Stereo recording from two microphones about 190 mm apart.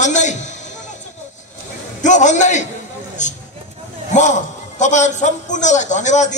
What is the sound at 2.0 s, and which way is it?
A man's voice, 40° left (ahead or behind).